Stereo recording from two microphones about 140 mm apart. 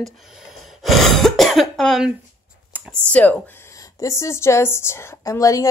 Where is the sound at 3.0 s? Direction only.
10° left (ahead or behind).